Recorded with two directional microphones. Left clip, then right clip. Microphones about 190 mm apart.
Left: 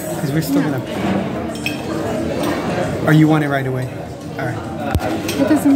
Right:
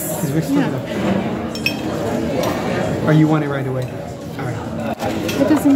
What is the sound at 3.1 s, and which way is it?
Speech, 75° left (ahead or behind).